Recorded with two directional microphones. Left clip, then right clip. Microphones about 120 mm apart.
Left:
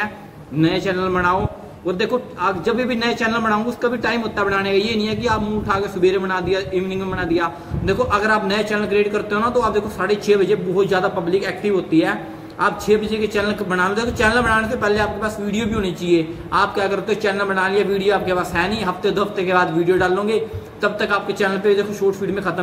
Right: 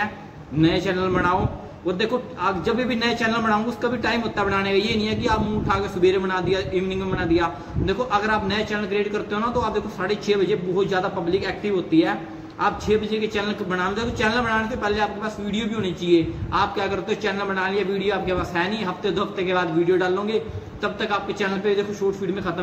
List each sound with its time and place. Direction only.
0.6 s a man's voice: 25° left (ahead or behind)